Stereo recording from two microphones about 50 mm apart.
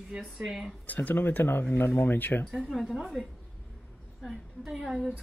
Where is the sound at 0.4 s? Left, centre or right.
Centre.